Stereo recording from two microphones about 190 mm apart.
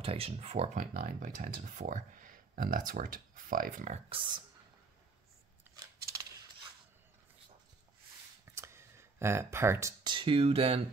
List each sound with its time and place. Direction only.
0.0 s speech: 30° right (ahead or behind)
0.9 s speech: 45° right (ahead or behind)
4.1 s speech: 25° right (ahead or behind)
8.5 s speech: 15° right (ahead or behind); by 10.8 s 30° right (ahead or behind)